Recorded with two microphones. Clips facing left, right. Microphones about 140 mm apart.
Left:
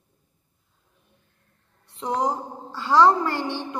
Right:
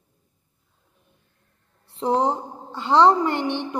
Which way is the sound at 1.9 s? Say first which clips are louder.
Right 4 dB; 30° right (ahead or behind).